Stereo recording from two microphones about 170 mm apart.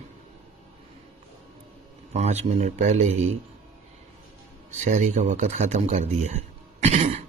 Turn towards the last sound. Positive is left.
turn(degrees=-40)  # may be behind; listen again after turning